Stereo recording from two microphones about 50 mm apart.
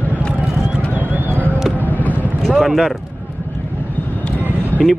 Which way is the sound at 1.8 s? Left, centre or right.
Left.